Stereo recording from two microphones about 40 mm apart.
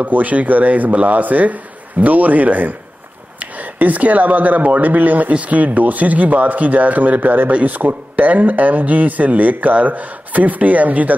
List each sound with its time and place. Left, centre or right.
0.0 s speech: right